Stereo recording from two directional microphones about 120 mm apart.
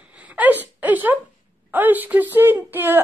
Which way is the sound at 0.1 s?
10° right (ahead or behind).